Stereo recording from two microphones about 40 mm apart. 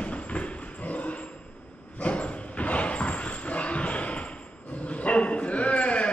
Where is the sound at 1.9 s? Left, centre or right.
Left.